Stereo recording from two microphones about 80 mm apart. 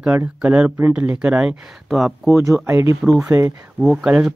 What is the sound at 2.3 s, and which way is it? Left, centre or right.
Speech, right.